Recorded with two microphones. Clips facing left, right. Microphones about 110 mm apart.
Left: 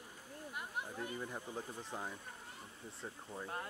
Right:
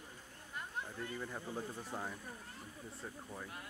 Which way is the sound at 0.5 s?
15° left (ahead or behind).